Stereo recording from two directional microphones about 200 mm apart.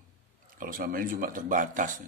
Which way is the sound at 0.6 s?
45° right (ahead or behind).